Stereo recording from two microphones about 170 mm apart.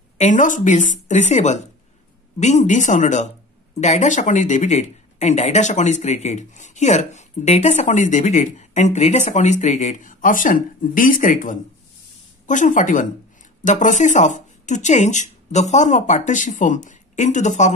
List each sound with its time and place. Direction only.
0.2 s speech: 50° left (ahead or behind)